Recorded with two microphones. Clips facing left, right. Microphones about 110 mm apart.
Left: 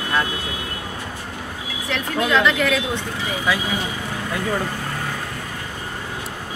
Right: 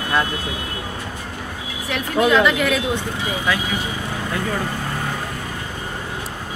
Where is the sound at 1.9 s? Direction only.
10° right (ahead or behind).